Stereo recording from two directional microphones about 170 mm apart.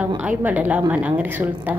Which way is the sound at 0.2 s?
10° right (ahead or behind).